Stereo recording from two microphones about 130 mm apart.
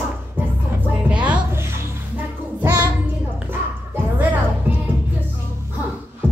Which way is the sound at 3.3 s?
15° right (ahead or behind).